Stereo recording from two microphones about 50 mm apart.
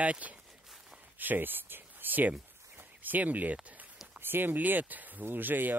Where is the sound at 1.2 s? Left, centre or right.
Right.